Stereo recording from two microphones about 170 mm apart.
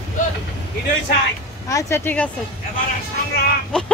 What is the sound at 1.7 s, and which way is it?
Speech, 15° left (ahead or behind).